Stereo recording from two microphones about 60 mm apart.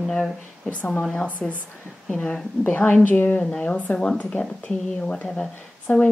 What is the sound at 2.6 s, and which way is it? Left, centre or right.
A woman's voice, left.